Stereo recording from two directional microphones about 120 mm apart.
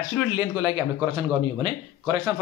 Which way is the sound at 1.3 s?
45° right (ahead or behind).